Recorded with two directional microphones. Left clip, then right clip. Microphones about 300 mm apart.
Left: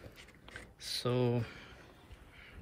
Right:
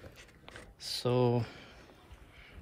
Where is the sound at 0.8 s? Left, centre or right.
Centre.